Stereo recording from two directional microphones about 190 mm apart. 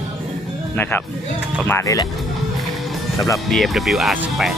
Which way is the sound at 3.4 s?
Centre (ahead or behind).